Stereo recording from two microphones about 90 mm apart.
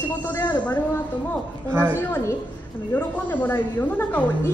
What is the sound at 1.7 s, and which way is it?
Speech, 20° right (ahead or behind).